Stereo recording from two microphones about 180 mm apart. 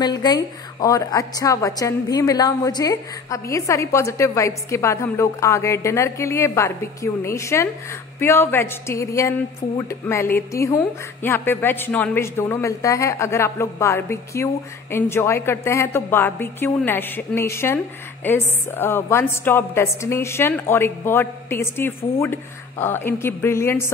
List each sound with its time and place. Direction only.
0.0 s a woman's voice: 25° left (ahead or behind)